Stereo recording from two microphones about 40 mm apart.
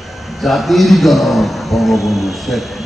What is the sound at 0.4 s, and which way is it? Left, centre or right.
A man's voice, centre.